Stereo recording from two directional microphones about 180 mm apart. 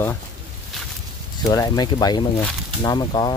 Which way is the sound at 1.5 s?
20° left (ahead or behind).